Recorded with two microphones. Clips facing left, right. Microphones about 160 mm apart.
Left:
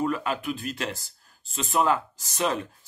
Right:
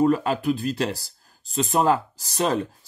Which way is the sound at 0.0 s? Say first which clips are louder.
Right 7 dB; 35° right (ahead or behind).